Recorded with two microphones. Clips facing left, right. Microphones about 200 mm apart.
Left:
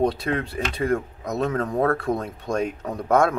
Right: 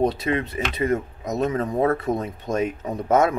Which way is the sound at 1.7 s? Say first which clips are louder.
Right 1 dB; 15° right (ahead or behind).